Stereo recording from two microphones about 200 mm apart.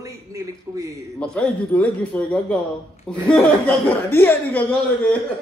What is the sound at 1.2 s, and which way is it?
A man's voice, 5° left (ahead or behind).